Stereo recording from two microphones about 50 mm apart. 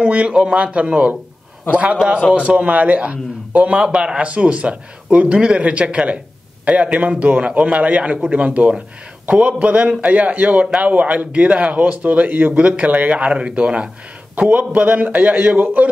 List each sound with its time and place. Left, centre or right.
0.0 s speech: right
2.0 s a man's voice: centre
2.3 s a man's voice: right